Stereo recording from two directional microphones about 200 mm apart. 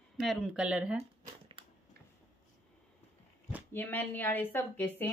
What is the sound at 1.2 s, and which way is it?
Shuffling cards, 25° right (ahead or behind).